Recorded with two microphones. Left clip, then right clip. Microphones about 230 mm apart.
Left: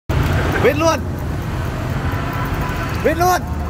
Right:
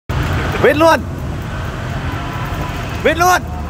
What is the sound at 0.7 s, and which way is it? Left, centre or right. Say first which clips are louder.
Speech: right 6 dB; centre.